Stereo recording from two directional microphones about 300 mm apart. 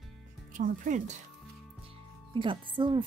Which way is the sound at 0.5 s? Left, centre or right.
Right.